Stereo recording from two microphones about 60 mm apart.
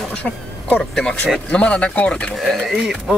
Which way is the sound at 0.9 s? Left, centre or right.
Centre.